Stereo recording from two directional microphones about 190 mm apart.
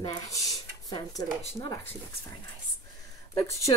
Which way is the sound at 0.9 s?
20° left (ahead or behind).